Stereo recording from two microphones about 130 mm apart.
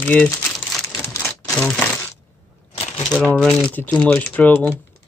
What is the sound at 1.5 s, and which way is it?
Speech, 10° left (ahead or behind).